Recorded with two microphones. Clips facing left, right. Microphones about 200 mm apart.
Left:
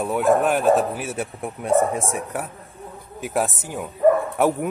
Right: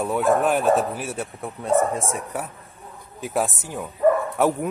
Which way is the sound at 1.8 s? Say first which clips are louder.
Left 1 dB; 15° left (ahead or behind).